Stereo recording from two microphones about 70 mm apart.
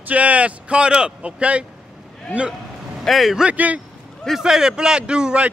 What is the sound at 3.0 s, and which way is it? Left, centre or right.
Speech, centre.